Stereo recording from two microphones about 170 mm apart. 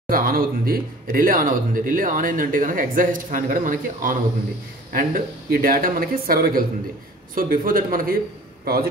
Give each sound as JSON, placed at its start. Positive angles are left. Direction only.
{"t": 0.1, "sound": "speech", "side_deg": -60}